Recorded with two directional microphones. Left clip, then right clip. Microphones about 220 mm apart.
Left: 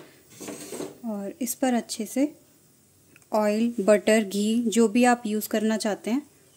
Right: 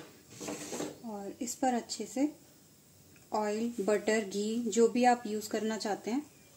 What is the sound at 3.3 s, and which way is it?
Speech, 40° left (ahead or behind).